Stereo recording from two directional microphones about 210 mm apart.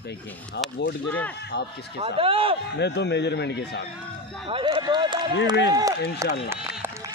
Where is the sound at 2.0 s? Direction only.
25° right (ahead or behind).